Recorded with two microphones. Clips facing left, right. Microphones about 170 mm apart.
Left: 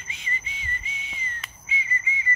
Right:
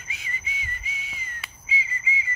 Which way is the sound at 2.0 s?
90° right.